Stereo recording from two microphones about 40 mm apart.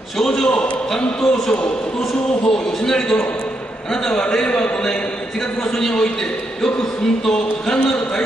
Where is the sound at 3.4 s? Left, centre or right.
Centre.